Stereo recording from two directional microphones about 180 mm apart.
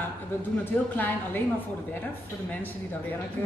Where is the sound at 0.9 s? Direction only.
10° left (ahead or behind).